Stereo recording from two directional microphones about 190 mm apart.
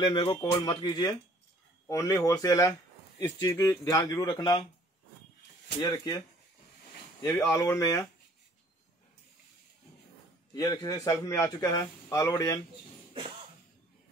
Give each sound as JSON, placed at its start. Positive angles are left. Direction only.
{"t": 0.0, "sound": "speech", "side_deg": 25}
{"t": 5.8, "sound": "speech", "side_deg": 25}
{"t": 10.5, "sound": "speech", "side_deg": 20}